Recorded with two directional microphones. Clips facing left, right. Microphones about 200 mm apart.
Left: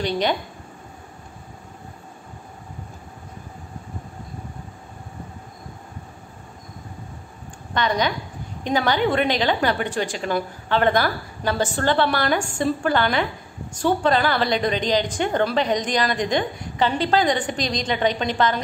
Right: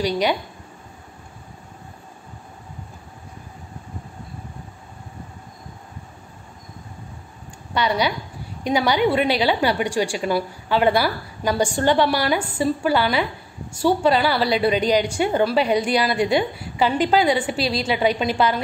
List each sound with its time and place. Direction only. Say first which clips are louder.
0.0 s a woman's voice: right 1 dB; 10° right (ahead or behind)
7.7 s a woman's voice: right 1 dB; 10° right (ahead or behind)